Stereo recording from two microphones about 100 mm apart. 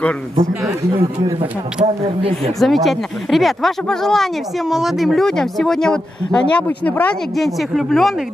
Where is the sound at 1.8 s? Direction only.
75° right (ahead or behind).